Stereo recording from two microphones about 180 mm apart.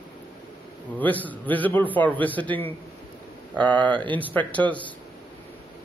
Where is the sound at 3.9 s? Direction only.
25° right (ahead or behind).